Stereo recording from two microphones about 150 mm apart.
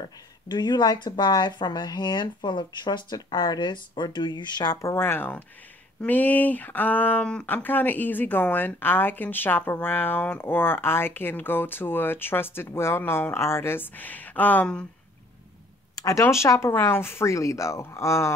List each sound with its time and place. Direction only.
0.5 s speech: 30° left (ahead or behind)
4.9 s speech: 15° left (ahead or behind)
16.0 s speech: 20° left (ahead or behind)